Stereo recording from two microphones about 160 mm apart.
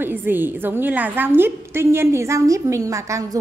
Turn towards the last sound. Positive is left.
turn(degrees=-20)  # may be behind; listen again after turning